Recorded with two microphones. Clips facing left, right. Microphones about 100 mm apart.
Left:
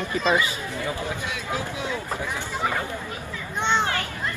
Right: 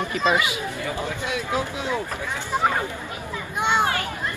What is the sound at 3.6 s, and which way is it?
Children playing, 10° right (ahead or behind).